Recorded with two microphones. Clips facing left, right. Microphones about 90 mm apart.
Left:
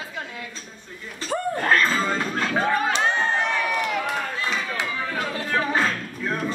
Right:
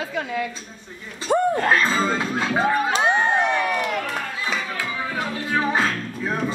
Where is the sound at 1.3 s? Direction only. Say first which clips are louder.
Right 4 dB; 15° right (ahead or behind).